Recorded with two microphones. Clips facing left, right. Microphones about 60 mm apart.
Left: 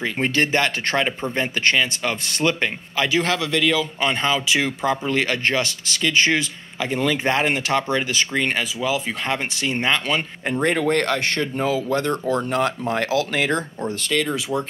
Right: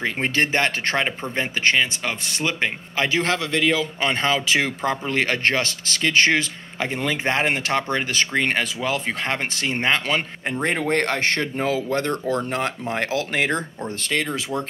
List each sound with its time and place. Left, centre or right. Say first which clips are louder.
0.0 s a man's voice: left 1 dB; right
3.0 s speech: left 1 dB; right
6.9 s speech: left 3 dB; right
12.1 s speech: left 1 dB; left
12.4 s a man's voice: left 3 dB; right